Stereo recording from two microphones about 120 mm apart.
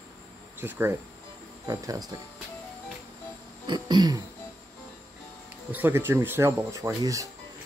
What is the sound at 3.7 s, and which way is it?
Speech, 35° right (ahead or behind).